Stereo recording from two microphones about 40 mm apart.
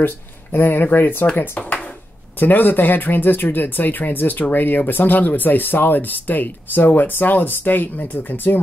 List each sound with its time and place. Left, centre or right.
0.0 s speech: left